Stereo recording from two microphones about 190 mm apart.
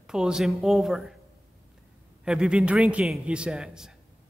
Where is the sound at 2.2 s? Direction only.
5° right (ahead or behind).